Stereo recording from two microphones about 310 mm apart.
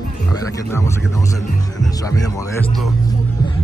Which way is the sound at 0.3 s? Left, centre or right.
Centre.